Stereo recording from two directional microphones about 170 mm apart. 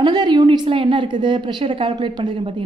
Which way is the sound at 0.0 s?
25° right (ahead or behind).